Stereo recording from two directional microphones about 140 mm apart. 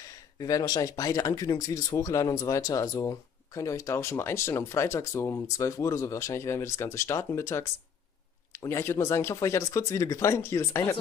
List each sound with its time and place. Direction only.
0.0 s speech: 25° left (ahead or behind)